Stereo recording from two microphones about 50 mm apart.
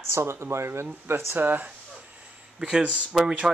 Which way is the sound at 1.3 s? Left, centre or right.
Right.